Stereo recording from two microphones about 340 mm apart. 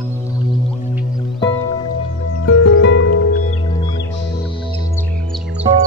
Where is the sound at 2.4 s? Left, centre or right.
Left.